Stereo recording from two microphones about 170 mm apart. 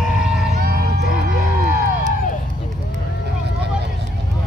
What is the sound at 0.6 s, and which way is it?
Music, 55° right (ahead or behind).